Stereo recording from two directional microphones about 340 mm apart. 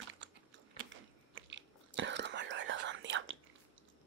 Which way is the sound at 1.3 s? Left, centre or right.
Right.